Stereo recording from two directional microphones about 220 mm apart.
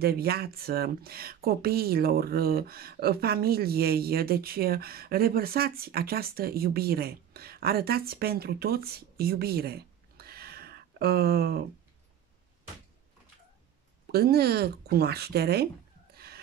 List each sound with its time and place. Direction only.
0.0 s speech: 45° right (ahead or behind)
14.1 s speech: 45° right (ahead or behind)